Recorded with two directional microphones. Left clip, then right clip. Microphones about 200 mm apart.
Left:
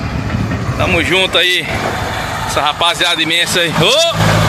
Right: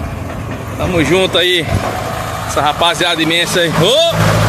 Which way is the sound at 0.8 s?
10° right (ahead or behind).